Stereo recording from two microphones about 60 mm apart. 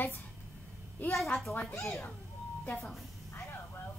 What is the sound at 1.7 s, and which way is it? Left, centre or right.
Speech, left.